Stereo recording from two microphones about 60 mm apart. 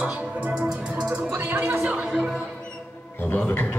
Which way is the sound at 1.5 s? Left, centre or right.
Right.